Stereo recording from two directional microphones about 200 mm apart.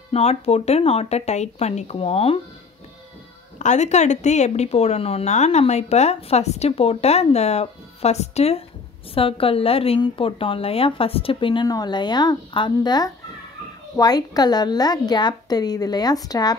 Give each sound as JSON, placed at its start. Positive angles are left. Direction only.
{"t": 0.1, "sound": "speech", "side_deg": 30}
{"t": 3.5, "sound": "a woman's voice", "side_deg": 35}